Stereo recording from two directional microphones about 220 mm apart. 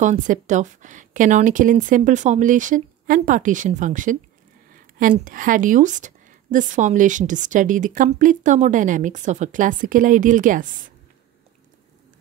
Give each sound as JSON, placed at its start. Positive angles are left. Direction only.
{"t": 0.0, "sound": "a woman's voice", "side_deg": -35}